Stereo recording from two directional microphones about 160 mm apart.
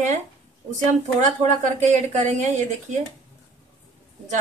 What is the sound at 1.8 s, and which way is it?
Speech, 50° right (ahead or behind).